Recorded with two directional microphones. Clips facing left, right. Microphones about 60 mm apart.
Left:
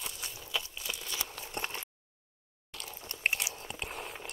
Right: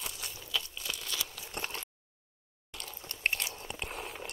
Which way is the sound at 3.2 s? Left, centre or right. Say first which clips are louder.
Left 1 dB; centre.